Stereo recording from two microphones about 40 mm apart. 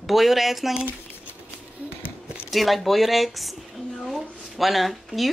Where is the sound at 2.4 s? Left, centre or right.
Centre.